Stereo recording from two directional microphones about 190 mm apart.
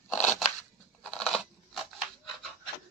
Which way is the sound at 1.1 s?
Centre (ahead or behind).